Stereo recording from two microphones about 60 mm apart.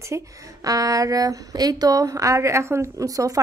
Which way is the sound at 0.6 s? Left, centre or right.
Right.